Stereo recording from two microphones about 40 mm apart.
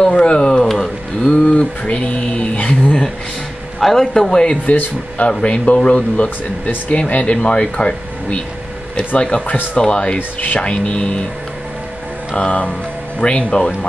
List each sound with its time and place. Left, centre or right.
0.0 s a sound: left
0.7 s a sound: centre
1.5 s mantra: left
3.8 s speech: centre
4.3 s speech: left
4.6 s speech: left
7.3 s speech: left
10.1 s speech: left
10.6 s speech: left
12.4 s speech: left